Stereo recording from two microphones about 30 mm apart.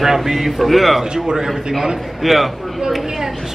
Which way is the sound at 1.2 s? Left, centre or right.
Centre.